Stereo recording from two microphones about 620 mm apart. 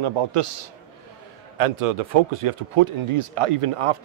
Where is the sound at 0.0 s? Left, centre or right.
Right.